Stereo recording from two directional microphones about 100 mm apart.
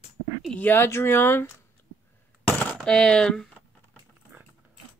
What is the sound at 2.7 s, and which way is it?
Speech, 10° left (ahead or behind).